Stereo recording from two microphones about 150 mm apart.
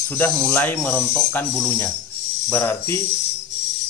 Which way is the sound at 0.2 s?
15° left (ahead or behind).